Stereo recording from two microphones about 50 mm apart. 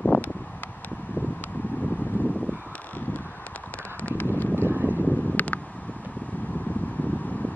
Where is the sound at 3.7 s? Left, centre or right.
Left.